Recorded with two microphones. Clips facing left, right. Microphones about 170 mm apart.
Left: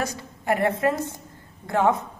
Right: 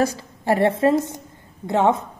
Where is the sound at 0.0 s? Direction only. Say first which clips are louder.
Right 7 dB; 30° right (ahead or behind).